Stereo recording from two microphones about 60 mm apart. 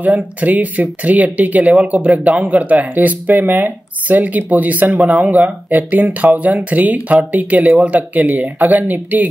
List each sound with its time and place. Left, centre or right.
0.0 s speech: right